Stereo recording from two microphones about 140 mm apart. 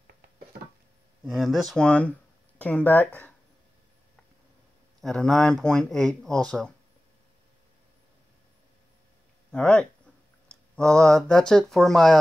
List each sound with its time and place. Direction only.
0.0 s a sound: 90° right
1.2 s speech: centre (ahead or behind)
5.0 s speech: 5° left (ahead or behind)
9.5 s speech: 5° left (ahead or behind)